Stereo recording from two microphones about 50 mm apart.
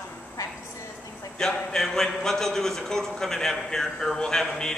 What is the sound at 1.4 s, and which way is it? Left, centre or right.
A man's voice, centre.